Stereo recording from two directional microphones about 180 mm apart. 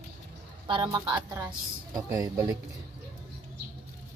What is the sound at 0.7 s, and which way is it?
Speech, 25° right (ahead or behind).